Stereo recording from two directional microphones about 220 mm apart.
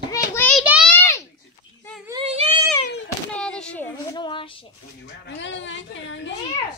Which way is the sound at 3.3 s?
5° left (ahead or behind).